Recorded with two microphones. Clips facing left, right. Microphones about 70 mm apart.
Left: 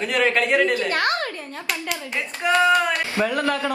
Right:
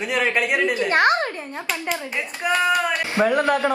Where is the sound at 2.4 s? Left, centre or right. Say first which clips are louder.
Left 2 dB; centre.